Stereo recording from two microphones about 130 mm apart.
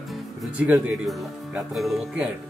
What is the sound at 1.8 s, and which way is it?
Speech, centre (ahead or behind).